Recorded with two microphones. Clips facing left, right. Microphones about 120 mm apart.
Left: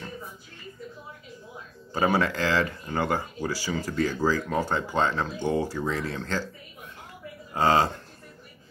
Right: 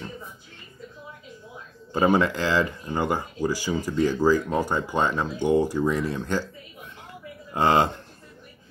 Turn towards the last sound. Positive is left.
turn(degrees=-20)  # may be behind; listen again after turning